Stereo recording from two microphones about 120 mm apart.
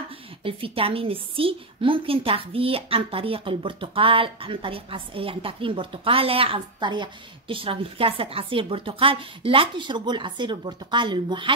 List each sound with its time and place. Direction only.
0.4 s a woman's voice: 50° right (ahead or behind)